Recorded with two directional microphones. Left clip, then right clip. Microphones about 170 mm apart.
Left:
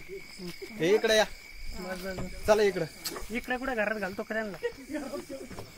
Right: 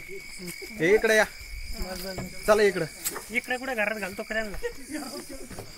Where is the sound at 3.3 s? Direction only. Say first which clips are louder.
Right 3 dB; 35° left (ahead or behind).